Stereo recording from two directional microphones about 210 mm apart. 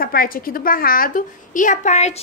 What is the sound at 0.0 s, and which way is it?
A woman's voice, 45° left (ahead or behind).